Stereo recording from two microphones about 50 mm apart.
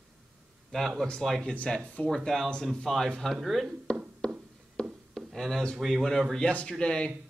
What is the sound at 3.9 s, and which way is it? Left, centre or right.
Speech, centre.